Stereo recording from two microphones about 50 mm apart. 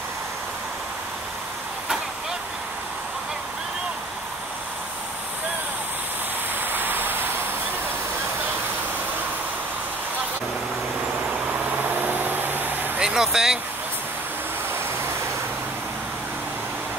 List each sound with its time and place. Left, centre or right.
6.6 s a sound: right
11.8 s vehicle: right
13.0 s speech: centre